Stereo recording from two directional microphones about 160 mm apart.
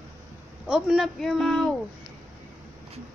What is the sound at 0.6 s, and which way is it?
Speech, 5° right (ahead or behind).